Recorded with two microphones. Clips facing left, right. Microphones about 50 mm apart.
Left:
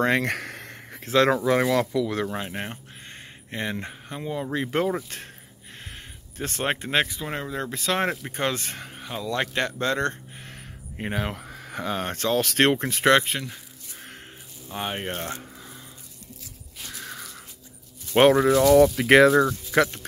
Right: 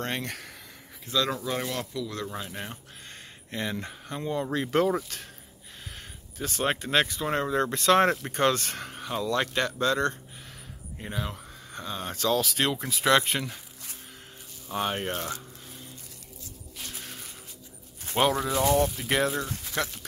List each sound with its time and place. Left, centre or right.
0.1 s speech: left
2.3 s speech: left
4.1 s speech: centre
6.3 s speech: left
6.6 s speech: left
7.2 s speech: centre
9.3 s speech: centre; by 10.5 s left
11.0 s speech: left
12.4 s speech: left
13.2 s speech: centre
14.7 s speech: centre
15.1 s speech: left
18.3 s speech: left
18.7 s speech: left